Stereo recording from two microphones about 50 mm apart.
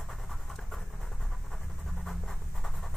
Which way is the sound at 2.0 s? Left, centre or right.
Centre.